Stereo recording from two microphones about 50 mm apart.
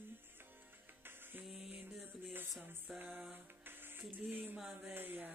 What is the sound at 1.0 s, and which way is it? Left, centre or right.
Music, right.